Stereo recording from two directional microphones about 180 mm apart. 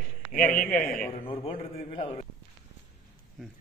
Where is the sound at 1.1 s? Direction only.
30° left (ahead or behind).